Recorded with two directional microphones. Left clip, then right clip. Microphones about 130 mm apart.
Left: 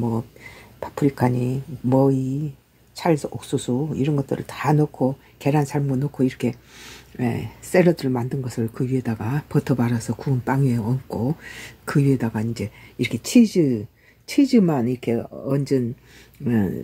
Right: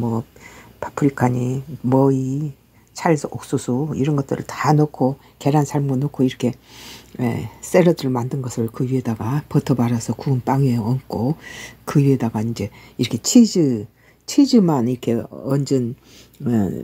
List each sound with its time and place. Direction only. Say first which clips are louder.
0.7 s speech: right 2 dB; 25° right (ahead or behind)